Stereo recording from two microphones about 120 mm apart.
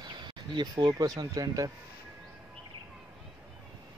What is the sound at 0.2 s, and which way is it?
Speech, 40° right (ahead or behind).